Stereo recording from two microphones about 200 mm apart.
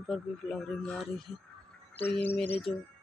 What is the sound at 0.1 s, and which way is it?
Speech, centre (ahead or behind).